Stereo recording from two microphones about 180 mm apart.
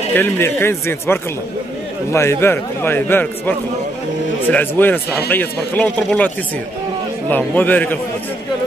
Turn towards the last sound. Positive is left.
turn(degrees=10)  # may be behind; listen again after turning